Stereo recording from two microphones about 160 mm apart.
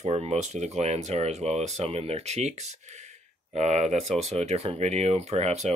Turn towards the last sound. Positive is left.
turn(degrees=-45)  # may be behind; listen again after turning